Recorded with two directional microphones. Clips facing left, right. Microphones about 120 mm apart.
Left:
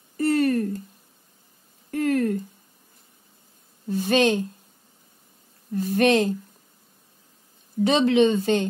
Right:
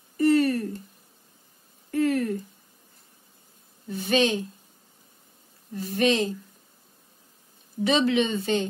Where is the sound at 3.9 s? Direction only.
40° left (ahead or behind).